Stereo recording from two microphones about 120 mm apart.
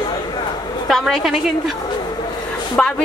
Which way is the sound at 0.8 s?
Centre (ahead or behind).